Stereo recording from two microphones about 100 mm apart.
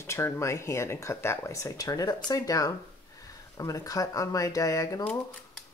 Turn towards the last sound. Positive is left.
turn(degrees=35)  # may be behind; listen again after turning